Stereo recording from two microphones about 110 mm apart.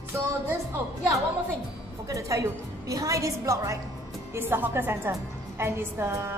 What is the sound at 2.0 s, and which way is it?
A woman's voice, 30° right (ahead or behind).